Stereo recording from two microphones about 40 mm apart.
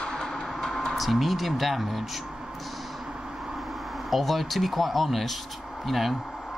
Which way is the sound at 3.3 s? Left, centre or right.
Centre.